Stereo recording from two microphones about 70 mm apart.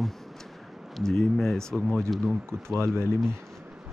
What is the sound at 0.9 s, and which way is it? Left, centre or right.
Speech, centre.